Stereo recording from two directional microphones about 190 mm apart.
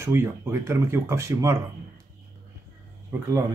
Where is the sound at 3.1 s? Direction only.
15° right (ahead or behind).